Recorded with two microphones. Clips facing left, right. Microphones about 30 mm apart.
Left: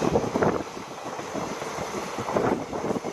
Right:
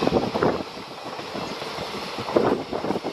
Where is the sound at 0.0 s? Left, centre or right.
Right.